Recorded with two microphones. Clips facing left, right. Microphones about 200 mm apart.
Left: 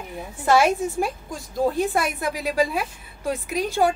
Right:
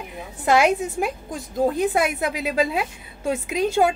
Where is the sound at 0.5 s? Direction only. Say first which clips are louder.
Even; 15° right (ahead or behind).